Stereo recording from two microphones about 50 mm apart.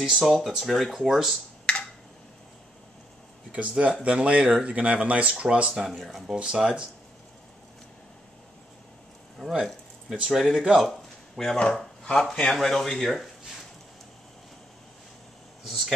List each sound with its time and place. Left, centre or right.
0.2 s speech: centre
1.7 s a sound: left
3.5 s speech: right
5.9 s speech: centre
6.3 s speech: centre
9.4 s speech: centre
10.8 s a sound: centre
11.6 s speech: centre
15.6 s speech: centre